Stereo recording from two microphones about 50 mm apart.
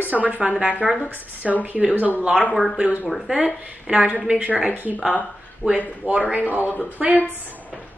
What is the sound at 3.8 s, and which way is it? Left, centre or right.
A woman's voice, right.